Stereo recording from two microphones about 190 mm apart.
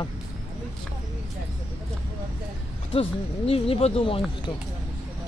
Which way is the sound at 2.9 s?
30° left (ahead or behind).